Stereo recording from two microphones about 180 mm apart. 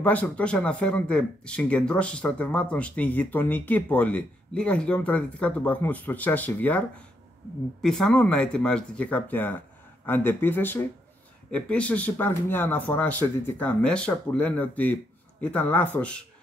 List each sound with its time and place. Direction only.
0.0 s speech: 10° left (ahead or behind)
7.8 s speech: 5° left (ahead or behind)